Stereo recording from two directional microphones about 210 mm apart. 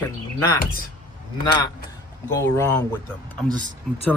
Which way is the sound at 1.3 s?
20° left (ahead or behind).